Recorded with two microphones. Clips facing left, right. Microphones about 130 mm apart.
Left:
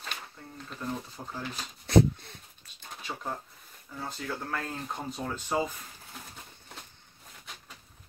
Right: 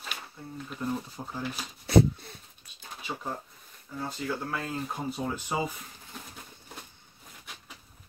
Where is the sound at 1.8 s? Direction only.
5° right (ahead or behind).